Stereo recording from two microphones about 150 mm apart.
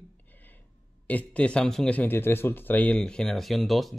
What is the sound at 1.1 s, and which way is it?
Speech, 10° left (ahead or behind).